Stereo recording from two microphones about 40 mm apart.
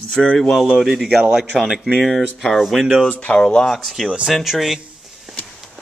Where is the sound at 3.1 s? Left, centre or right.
Left.